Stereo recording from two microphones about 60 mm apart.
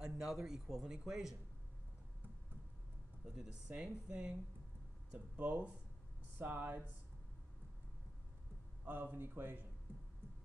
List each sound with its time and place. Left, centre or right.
0.0 s speech: centre
3.3 s speech: centre
5.1 s speech: right
6.3 s speech: right
8.8 s speech: right